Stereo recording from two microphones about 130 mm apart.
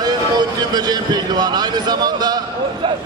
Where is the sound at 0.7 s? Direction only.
30° right (ahead or behind).